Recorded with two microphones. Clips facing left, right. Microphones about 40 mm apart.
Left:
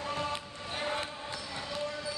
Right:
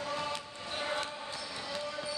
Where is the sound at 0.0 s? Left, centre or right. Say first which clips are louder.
Left 1 dB; left.